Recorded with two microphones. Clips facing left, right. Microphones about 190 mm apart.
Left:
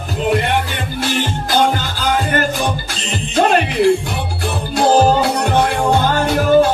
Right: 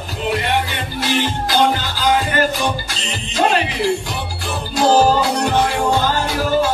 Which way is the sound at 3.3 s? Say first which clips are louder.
Left 4 dB; 55° left (ahead or behind).